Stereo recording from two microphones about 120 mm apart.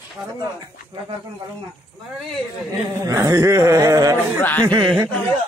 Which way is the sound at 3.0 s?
30° right (ahead or behind).